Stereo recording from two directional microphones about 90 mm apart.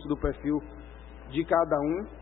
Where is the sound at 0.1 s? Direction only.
15° left (ahead or behind).